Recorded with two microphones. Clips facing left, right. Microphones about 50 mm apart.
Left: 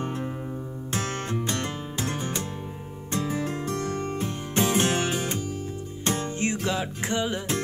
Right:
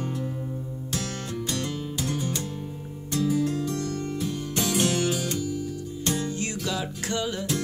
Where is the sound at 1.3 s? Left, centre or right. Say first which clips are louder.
Left 1 dB; left.